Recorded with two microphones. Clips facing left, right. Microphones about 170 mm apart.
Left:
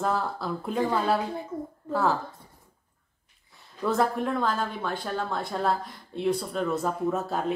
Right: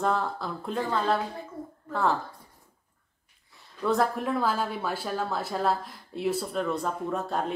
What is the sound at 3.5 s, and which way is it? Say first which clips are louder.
Speech: even; centre (ahead or behind).